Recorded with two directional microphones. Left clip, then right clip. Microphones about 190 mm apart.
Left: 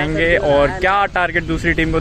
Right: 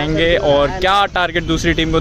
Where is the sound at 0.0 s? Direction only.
15° right (ahead or behind).